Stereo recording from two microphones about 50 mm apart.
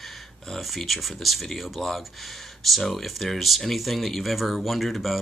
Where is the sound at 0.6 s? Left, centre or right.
Centre.